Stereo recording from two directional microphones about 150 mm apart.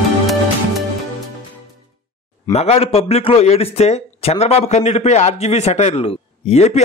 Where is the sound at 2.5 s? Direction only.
45° left (ahead or behind).